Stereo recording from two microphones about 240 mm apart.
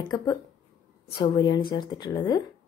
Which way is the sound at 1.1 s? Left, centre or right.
Centre.